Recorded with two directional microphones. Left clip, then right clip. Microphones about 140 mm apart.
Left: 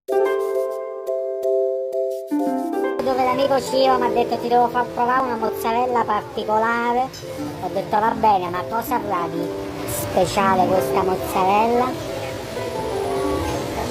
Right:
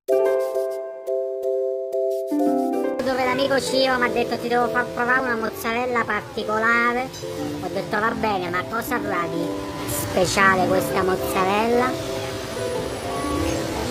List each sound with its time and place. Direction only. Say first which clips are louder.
3.1 s a woman's voice: left 3 dB; 10° right (ahead or behind)